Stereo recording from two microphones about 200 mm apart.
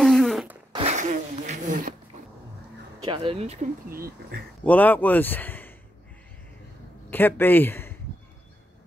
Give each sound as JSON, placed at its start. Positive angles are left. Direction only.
{"t": 0.0, "sound": "a sound", "side_deg": 0}
{"t": 0.7, "sound": "a sound", "side_deg": -35}
{"t": 3.0, "sound": "speech", "side_deg": -25}
{"t": 3.9, "sound": "speech", "side_deg": -50}
{"t": 4.6, "sound": "speech", "side_deg": 10}
{"t": 7.1, "sound": "speech", "side_deg": 10}